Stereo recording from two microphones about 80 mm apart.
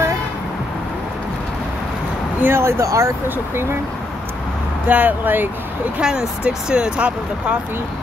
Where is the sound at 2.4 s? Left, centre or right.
Right.